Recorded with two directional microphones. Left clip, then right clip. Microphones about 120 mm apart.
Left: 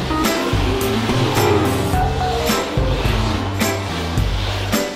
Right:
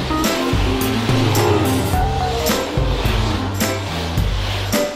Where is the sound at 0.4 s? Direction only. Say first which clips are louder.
Even; 15° right (ahead or behind).